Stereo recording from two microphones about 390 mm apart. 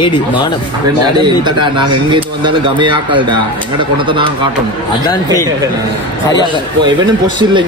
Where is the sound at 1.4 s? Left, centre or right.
Centre.